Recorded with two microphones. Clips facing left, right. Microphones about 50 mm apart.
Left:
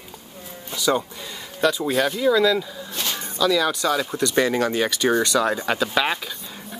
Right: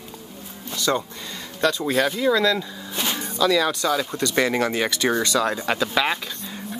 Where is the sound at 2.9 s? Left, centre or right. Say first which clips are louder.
Right 3 dB; centre.